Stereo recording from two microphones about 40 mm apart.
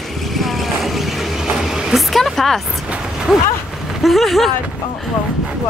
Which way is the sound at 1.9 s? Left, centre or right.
Centre.